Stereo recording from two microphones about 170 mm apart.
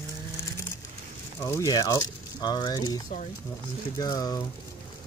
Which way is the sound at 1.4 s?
20° left (ahead or behind).